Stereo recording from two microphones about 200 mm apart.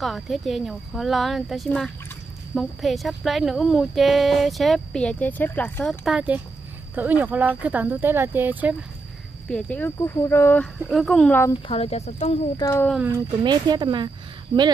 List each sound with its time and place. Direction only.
0.0 s speech: centre (ahead or behind)
6.0 s speech: 5° right (ahead or behind)
9.5 s speech: 5° left (ahead or behind)
11.6 s speech: 30° left (ahead or behind)
12.5 s speech: 15° left (ahead or behind)
13.4 s speech: 20° right (ahead or behind)